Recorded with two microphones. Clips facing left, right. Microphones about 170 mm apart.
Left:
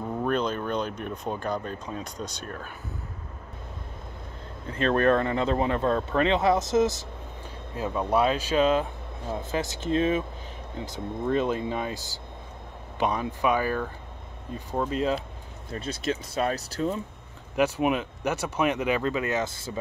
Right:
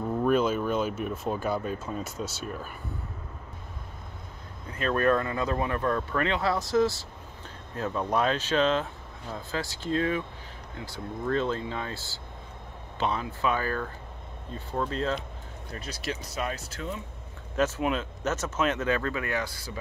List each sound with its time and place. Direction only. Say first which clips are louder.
0.3 s a sound: right 3 dB; 5° right (ahead or behind)
2.0 s speech: right 1 dB; 5° right (ahead or behind)
4.6 s speech: left 3 dB; 25° left (ahead or behind)
15.7 s speech: left 6 dB; 25° left (ahead or behind)
17.6 s speech: left 3 dB; 15° left (ahead or behind)